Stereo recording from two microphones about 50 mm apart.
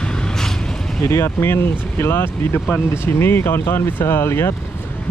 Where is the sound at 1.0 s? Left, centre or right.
Left.